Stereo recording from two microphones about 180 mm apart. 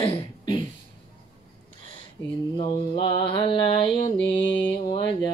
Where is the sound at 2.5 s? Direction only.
30° left (ahead or behind).